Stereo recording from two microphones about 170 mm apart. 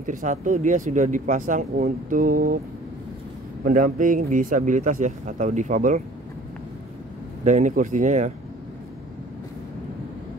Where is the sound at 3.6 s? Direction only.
50° right (ahead or behind).